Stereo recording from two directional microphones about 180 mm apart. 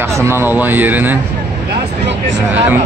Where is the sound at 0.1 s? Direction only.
15° right (ahead or behind).